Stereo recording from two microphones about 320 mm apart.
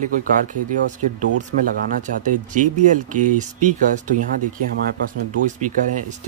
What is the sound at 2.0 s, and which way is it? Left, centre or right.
Speech, right.